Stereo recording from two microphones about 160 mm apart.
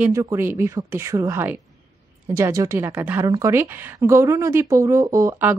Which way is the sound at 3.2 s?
20° right (ahead or behind).